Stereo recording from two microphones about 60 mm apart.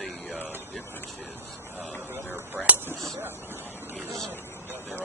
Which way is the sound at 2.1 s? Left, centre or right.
Right.